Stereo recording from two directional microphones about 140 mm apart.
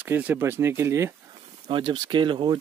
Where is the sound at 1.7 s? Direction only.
35° right (ahead or behind).